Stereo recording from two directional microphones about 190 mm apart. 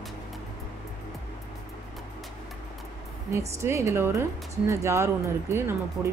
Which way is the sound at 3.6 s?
15° right (ahead or behind).